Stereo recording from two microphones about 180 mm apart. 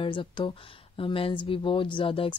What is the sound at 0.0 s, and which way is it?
Speech, 30° left (ahead or behind).